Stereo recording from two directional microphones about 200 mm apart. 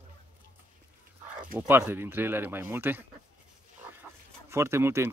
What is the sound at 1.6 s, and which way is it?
Speech, 10° right (ahead or behind).